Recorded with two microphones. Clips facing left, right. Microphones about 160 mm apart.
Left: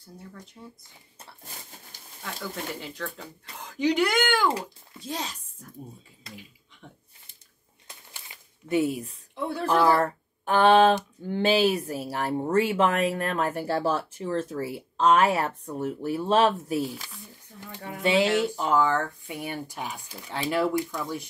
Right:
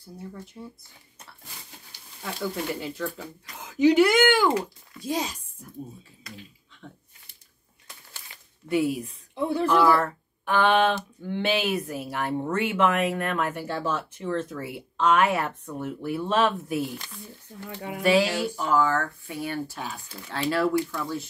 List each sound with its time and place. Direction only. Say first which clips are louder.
0.6 s speech: right 4 dB; 10° right (ahead or behind)
2.2 s speech: right 5 dB; 5° right (ahead or behind)
6.8 s speech: right 3 dB; 5° left (ahead or behind)
9.3 s speech: right 5 dB; 10° right (ahead or behind)
9.7 s speech: even; 35° left (ahead or behind)
16.8 s speech: even; centre (ahead or behind)
17.6 s speech: right 3 dB; 15° right (ahead or behind)
18.0 s speech: even; 25° left (ahead or behind)